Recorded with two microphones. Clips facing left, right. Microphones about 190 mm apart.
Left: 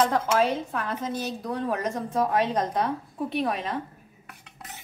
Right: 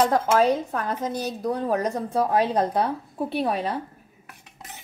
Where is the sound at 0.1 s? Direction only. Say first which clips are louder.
Right 4 dB; 40° right (ahead or behind).